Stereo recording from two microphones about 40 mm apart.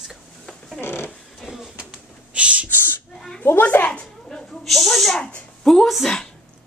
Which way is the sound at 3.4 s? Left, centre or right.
Left.